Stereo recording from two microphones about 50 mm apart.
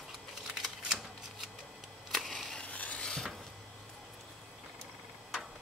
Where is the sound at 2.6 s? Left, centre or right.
Left.